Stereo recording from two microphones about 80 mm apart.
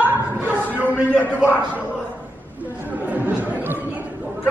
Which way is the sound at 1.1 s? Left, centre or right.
Centre.